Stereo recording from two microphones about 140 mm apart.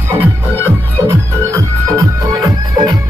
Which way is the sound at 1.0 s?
20° right (ahead or behind).